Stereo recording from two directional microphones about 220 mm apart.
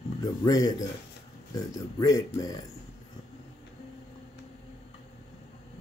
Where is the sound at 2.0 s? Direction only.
15° left (ahead or behind).